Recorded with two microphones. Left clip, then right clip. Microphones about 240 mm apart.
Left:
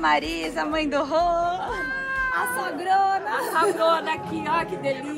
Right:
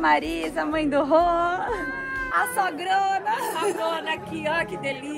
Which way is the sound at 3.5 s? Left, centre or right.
Centre.